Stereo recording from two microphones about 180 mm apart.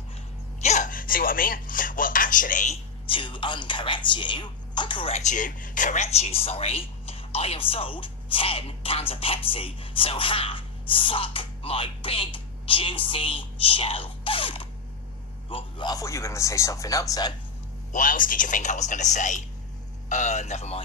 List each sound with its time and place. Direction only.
0.6 s speech: 40° left (ahead or behind)
3.1 s speech: 30° left (ahead or behind)
17.9 s a man's voice: 50° left (ahead or behind)